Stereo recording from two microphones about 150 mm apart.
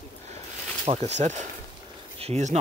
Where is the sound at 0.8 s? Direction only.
45° right (ahead or behind).